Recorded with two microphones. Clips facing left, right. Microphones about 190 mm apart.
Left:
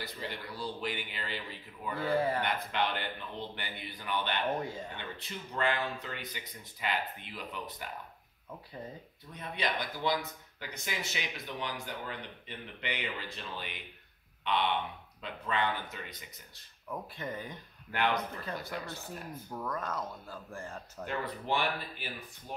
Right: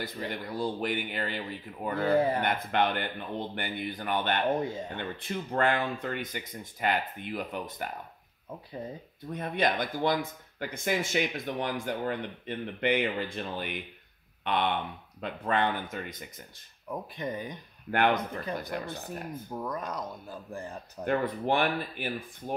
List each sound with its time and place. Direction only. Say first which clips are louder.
0.0 s speech: right 5 dB; 50° right (ahead or behind)
2.1 s speech: right 4 dB; 20° right (ahead or behind)
2.4 s speech: right 5 dB; 50° right (ahead or behind)
9.3 s speech: right 7 dB; 50° right (ahead or behind)
16.9 s speech: right 4 dB; 15° right (ahead or behind)
17.9 s speech: right 5 dB; 55° right (ahead or behind)
18.4 s speech: right 5 dB; 15° right (ahead or behind)
21.0 s speech: right 9 dB; 55° right (ahead or behind)